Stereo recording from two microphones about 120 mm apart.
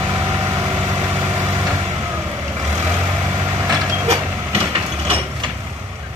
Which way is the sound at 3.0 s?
35° right (ahead or behind).